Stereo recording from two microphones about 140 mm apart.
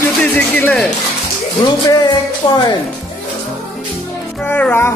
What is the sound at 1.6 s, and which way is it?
Music, 30° left (ahead or behind).